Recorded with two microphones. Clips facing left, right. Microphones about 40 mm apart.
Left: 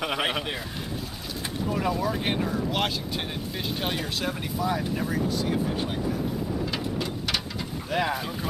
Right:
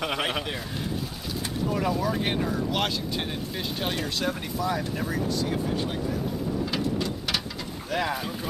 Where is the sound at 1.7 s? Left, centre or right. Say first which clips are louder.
Even; centre.